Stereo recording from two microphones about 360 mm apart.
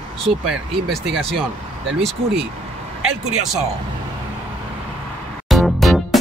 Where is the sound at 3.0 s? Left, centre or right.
Right.